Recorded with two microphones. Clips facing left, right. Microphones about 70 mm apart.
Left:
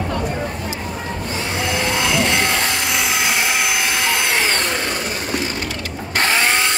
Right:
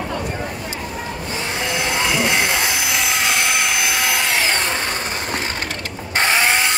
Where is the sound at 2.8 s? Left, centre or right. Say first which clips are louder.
Left 1 dB; centre.